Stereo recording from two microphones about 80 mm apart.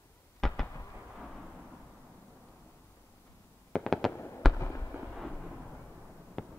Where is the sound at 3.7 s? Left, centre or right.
Centre.